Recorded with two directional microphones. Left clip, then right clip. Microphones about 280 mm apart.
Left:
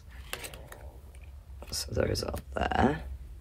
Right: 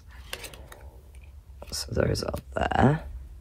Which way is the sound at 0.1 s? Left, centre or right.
Centre.